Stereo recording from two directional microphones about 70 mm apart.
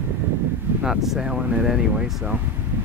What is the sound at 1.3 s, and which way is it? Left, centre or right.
Speech, centre.